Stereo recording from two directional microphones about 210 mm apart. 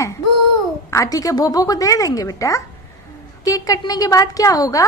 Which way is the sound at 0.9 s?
15° left (ahead or behind).